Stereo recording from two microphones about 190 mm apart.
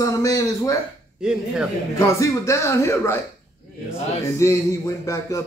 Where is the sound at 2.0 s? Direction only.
15° left (ahead or behind).